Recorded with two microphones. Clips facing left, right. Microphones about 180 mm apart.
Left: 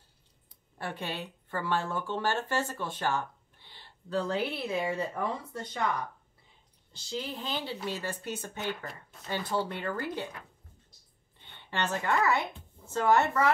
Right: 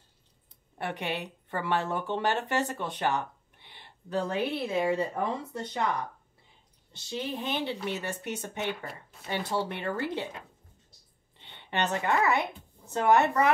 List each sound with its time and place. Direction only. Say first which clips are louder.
0.7 s speech: right 3 dB; 20° right (ahead or behind)
6.9 s speech: right 2 dB; 20° right (ahead or behind)